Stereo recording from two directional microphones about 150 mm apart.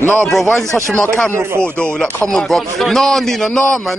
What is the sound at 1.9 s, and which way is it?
A man's voice, 5° left (ahead or behind).